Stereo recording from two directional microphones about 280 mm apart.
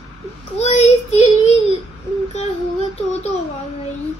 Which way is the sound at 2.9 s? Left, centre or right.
Left.